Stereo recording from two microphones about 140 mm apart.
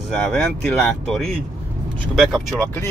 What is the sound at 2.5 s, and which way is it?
Speech, 15° left (ahead or behind).